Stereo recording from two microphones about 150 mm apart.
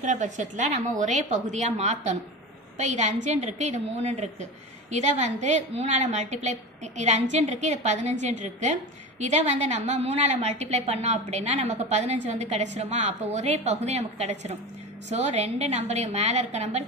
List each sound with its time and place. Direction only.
0.0 s a woman's voice: 55° right (ahead or behind)